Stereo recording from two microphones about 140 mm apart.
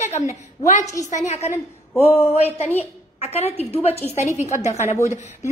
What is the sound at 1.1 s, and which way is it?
A woman's voice, 55° left (ahead or behind).